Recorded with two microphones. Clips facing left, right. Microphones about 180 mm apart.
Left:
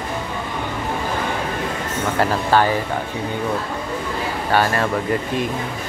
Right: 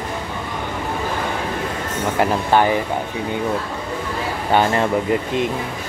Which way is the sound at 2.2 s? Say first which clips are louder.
Right 1 dB; 20° right (ahead or behind).